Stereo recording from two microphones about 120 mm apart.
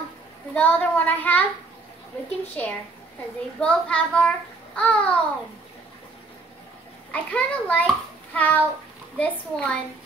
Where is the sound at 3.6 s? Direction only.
10° left (ahead or behind).